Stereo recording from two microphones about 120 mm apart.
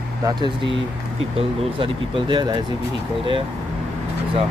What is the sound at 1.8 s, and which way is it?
Speech, 45° right (ahead or behind).